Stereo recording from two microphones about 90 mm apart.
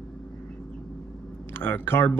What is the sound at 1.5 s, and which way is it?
Speech, 25° left (ahead or behind).